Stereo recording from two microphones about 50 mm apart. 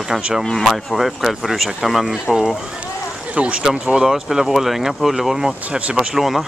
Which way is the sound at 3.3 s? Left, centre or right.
Right.